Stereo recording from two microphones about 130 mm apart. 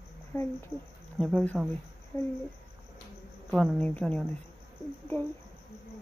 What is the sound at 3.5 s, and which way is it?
Speech, 5° left (ahead or behind).